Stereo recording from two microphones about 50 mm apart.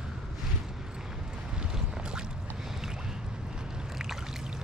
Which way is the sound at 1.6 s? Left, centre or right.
Centre.